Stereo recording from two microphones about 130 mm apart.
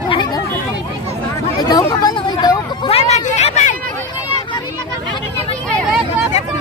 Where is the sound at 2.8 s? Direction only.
55° left (ahead or behind).